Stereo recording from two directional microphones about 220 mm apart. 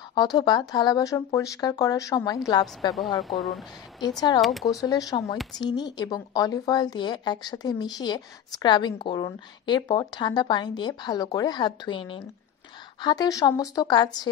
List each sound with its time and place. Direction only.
0.1 s speech: 20° left (ahead or behind)
2.9 s speech: centre (ahead or behind)
4.0 s a woman's voice: 20° left (ahead or behind)
4.4 s speech: centre (ahead or behind)
4.6 s a woman's voice: 15° left (ahead or behind)